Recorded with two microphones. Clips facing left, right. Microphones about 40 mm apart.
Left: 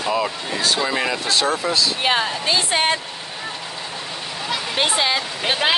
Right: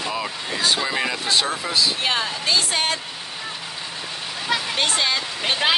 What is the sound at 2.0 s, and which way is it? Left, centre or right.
Speech, centre.